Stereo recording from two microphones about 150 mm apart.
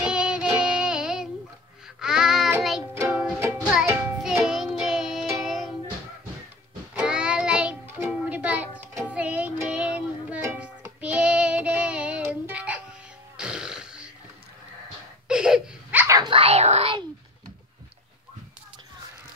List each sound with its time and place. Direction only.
0.0 s child singing: 5° right (ahead or behind)
2.0 s music: 5° right (ahead or behind)
3.3 s music: 15° right (ahead or behind)
3.7 s music: 5° right (ahead or behind)
7.0 s music: 5° right (ahead or behind)
15.2 s a sound: 5° right (ahead or behind)
16.2 s a sound: 35° right (ahead or behind)